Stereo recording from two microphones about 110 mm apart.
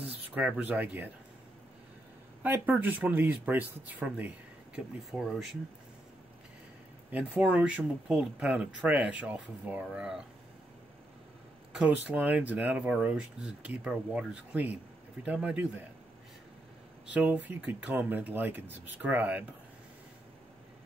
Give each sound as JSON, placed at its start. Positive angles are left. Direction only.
{"t": 0.0, "sound": "speech", "side_deg": -15}
{"t": 2.4, "sound": "speech", "side_deg": -15}
{"t": 4.7, "sound": "speech", "side_deg": -5}
{"t": 7.1, "sound": "speech", "side_deg": -15}
{"t": 11.7, "sound": "speech", "side_deg": -10}
{"t": 17.1, "sound": "speech", "side_deg": -15}